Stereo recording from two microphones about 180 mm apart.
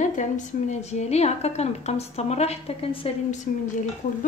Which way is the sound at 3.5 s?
50° left (ahead or behind).